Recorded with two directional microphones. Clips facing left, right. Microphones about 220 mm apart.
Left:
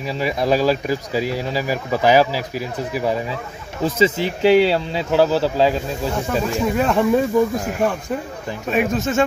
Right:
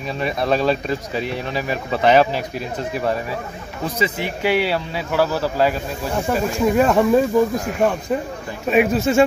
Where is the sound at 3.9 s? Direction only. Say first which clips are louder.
Left 5 dB; 25° left (ahead or behind).